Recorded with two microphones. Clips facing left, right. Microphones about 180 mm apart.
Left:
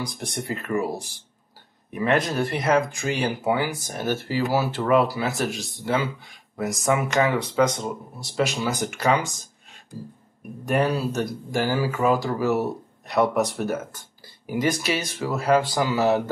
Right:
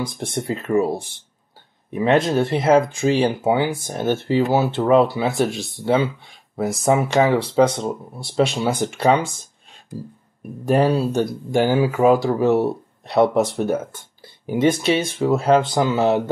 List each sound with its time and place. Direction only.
0.0 s speech: 25° right (ahead or behind)
5.5 s speech: centre (ahead or behind)
5.9 s speech: 30° right (ahead or behind)
10.6 s speech: 30° right (ahead or behind)
12.0 s speech: 40° right (ahead or behind)
12.4 s speech: 25° right (ahead or behind)